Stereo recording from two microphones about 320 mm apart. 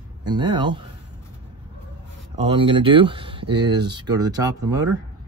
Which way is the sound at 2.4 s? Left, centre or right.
Centre.